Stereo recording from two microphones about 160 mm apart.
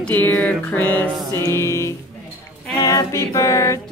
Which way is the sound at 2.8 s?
20° left (ahead or behind).